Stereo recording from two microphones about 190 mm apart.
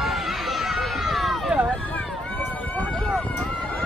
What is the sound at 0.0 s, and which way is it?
Run, centre (ahead or behind).